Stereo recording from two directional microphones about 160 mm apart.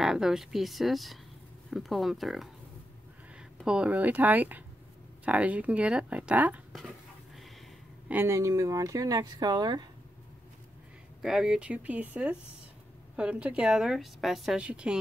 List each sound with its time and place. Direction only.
0.0 s a woman's voice: 5° right (ahead or behind)
3.6 s speech: 5° right (ahead or behind)
8.1 s speech: 15° right (ahead or behind)
11.2 s a woman's voice: 5° right (ahead or behind)